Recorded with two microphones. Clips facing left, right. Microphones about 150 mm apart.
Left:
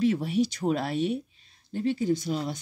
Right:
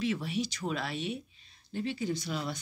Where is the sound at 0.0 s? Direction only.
50° left (ahead or behind).